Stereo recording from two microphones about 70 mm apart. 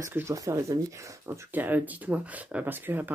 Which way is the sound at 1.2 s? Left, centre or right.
Right.